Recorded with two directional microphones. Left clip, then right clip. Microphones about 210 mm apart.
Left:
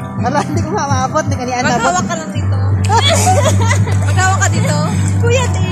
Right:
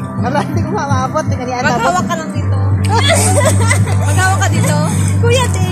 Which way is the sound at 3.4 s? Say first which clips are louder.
Right 1 dB; 5° right (ahead or behind).